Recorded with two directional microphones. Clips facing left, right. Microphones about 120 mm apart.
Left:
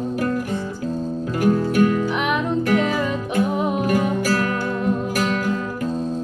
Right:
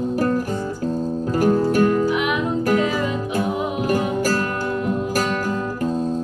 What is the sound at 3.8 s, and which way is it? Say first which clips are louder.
Music: even; 40° right (ahead or behind).